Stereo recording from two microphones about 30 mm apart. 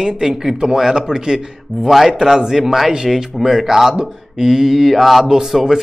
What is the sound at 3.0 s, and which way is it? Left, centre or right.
A man's voice, centre.